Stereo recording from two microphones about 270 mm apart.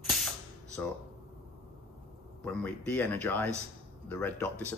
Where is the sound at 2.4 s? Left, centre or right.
Centre.